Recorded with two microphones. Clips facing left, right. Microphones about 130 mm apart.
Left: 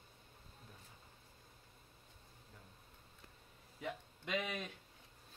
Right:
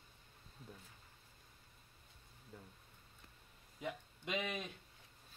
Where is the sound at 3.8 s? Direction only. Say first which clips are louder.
Even; 10° right (ahead or behind).